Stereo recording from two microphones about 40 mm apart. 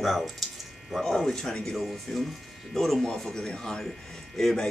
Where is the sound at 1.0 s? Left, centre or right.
Centre.